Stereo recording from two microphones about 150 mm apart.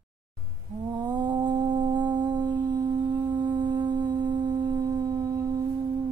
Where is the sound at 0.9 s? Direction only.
30° right (ahead or behind).